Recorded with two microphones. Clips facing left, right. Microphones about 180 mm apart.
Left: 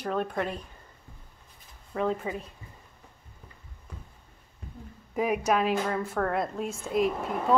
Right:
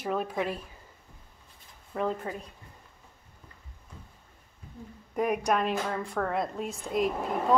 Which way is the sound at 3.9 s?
65° left (ahead or behind).